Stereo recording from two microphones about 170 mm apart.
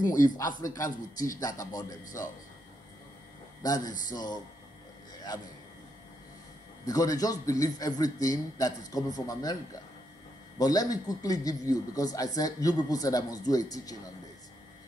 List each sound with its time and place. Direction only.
0.0 s a man's voice: 50° left (ahead or behind)
0.7 s a man's voice: 20° left (ahead or behind)
3.6 s speech: 20° left (ahead or behind)
6.9 s speech: 20° left (ahead or behind)
10.6 s speech: 20° left (ahead or behind)